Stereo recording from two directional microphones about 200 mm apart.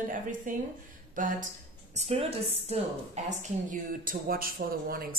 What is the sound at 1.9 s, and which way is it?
A woman's voice, 30° right (ahead or behind).